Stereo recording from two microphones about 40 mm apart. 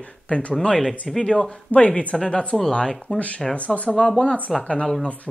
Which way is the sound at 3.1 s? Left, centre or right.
Left.